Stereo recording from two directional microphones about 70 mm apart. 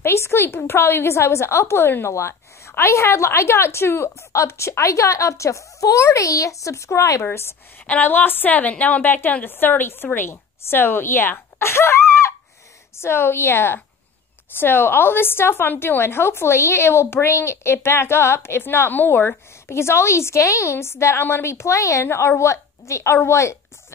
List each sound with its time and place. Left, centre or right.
0.0 s a woman's voice: left
7.2 s a woman's voice: left
7.8 s a woman's voice: left